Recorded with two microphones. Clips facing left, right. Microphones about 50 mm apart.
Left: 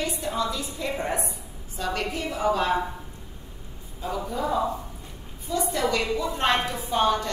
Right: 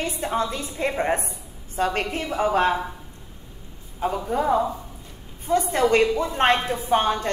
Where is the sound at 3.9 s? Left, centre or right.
Right.